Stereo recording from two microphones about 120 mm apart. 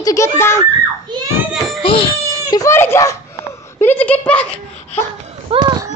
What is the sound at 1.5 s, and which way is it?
Baby cry, centre (ahead or behind).